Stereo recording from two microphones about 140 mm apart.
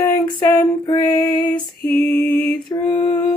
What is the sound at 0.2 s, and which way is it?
Female singing, 30° left (ahead or behind).